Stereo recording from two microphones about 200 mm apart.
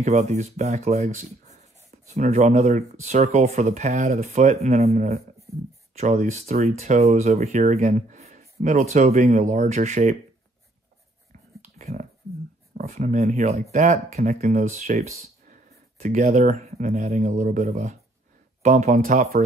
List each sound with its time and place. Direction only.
0.0 s speech: 35° right (ahead or behind)
11.6 s whispering: 35° right (ahead or behind)
12.7 s speech: 45° right (ahead or behind)